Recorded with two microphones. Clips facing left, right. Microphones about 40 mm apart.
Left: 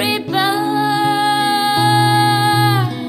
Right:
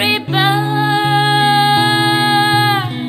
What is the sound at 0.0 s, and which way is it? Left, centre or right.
Music, right.